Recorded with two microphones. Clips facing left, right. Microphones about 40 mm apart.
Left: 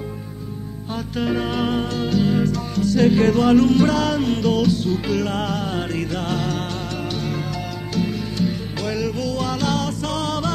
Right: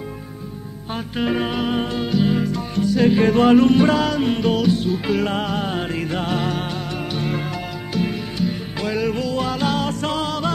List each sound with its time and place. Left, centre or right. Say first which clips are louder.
1.1 s music: right 1 dB; right
10.2 s music: even; centre